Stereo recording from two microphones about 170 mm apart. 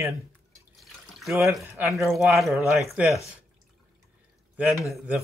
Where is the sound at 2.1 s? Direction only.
Centre (ahead or behind).